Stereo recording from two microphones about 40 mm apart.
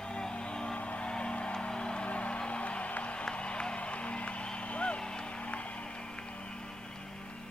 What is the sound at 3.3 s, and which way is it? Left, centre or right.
Music, left.